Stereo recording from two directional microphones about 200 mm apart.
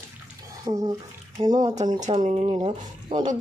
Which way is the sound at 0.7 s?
15° right (ahead or behind).